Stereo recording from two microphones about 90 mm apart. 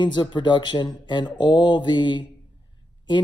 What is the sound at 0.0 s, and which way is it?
Speech, 60° left (ahead or behind).